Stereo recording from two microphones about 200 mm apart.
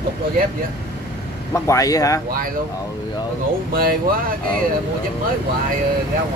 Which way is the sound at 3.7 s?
45° right (ahead or behind).